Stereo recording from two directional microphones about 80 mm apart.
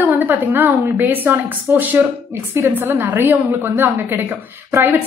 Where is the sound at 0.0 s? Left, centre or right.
Right.